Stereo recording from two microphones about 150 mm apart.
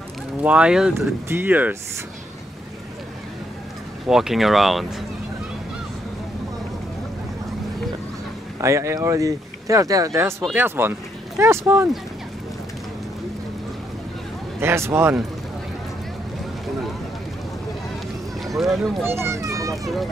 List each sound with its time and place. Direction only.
0.4 s speech: 5° right (ahead or behind)
4.1 s speech: centre (ahead or behind)
8.5 s speech: 20° right (ahead or behind)
14.6 s speech: 15° right (ahead or behind)
18.6 s speech: centre (ahead or behind)
19.2 s a child's voice: 20° right (ahead or behind)